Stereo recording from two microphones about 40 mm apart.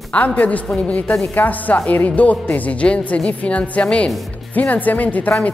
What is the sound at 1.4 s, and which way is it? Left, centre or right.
Speech, left.